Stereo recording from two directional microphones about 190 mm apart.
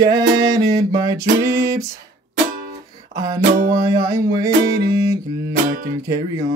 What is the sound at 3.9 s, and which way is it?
Mantra, 15° right (ahead or behind).